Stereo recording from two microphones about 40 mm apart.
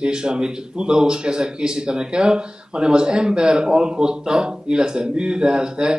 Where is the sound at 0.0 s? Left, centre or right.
Right.